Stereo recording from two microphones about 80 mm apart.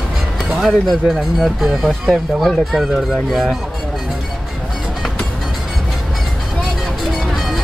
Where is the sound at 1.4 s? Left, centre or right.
Centre.